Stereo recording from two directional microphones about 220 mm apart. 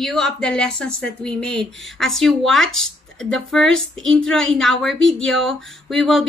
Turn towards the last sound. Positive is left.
turn(degrees=0)  # may be behind; listen again after turning